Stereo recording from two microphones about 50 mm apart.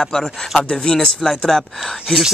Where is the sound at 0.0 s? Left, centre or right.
Centre.